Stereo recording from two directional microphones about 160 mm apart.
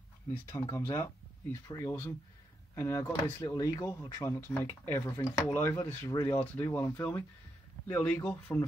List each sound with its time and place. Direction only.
0.5 s speech: 15° left (ahead or behind)
6.4 s speech: 10° left (ahead or behind)